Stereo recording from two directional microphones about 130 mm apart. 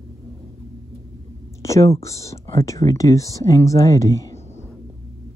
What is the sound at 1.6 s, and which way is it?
Speech, 25° left (ahead or behind).